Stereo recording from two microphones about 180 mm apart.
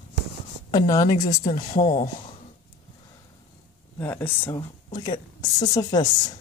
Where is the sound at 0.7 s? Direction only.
20° left (ahead or behind).